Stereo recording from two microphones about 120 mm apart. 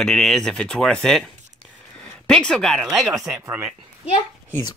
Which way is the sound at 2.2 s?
5° left (ahead or behind).